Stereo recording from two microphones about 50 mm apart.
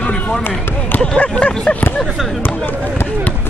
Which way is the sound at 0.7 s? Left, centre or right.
Left.